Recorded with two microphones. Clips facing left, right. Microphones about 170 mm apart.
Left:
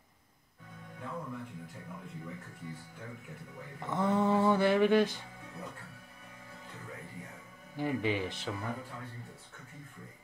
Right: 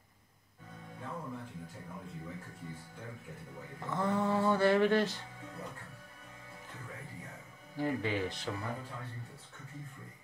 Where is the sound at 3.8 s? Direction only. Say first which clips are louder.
Left 3 dB; 20° left (ahead or behind).